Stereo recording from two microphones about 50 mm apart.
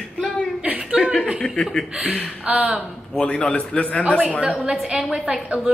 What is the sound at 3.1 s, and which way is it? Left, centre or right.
Speech, centre.